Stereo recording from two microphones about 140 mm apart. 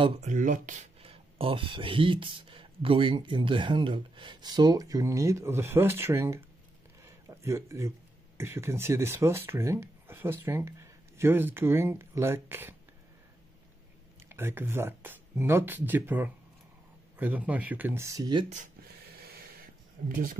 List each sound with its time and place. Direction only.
0.2 s speech: 60° right (ahead or behind)
1.0 s speech: 40° right (ahead or behind); by 6.4 s 20° right (ahead or behind)
7.1 s a sound: 20° right (ahead or behind)
8.4 s speech: 20° right (ahead or behind)
14.3 s speech: 15° right (ahead or behind); by 18.5 s 30° right (ahead or behind)
19.3 s a sound: 90° right